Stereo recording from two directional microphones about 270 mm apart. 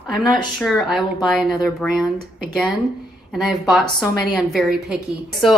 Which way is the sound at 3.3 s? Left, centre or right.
Centre.